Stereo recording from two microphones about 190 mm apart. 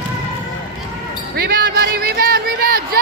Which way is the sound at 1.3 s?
55° right (ahead or behind).